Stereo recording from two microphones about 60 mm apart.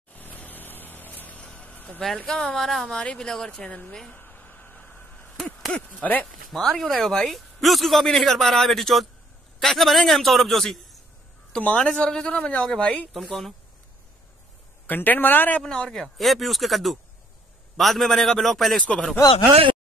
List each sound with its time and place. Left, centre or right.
0.1 s vehicle: left
1.4 s vehicle: centre
2.1 s a woman's voice: centre
4.1 s a sound: left
5.4 s owl: centre
6.0 s a man's voice: centre
6.5 s speech: centre
11.6 s a woman's voice: centre
13.1 s speech: centre
14.9 s speech: left
15.6 s speech: centre